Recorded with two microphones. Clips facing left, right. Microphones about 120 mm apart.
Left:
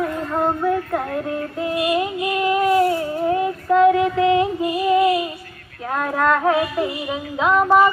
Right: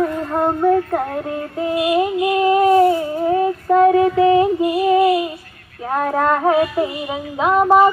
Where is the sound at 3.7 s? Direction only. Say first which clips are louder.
Right 2 dB; 35° right (ahead or behind).